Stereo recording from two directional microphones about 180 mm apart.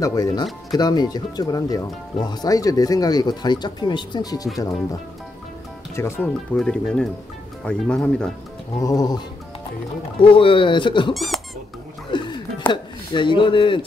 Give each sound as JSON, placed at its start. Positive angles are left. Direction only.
{"t": 0.0, "sound": "speech", "side_deg": 20}
{"t": 5.9, "sound": "speech", "side_deg": 15}
{"t": 8.7, "sound": "speech", "side_deg": 20}
{"t": 11.1, "sound": "squeak", "side_deg": 0}
{"t": 12.1, "sound": "a sound", "side_deg": 25}